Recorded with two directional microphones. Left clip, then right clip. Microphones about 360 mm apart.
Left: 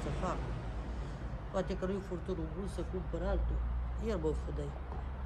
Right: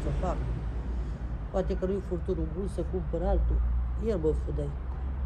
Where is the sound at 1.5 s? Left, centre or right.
Centre.